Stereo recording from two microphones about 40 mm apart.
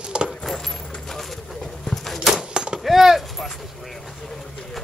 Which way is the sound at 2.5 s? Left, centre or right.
Right.